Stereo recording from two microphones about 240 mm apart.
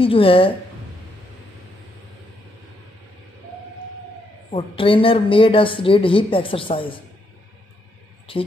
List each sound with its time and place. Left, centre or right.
0.0 s speech: left
4.5 s speech: left
8.3 s speech: left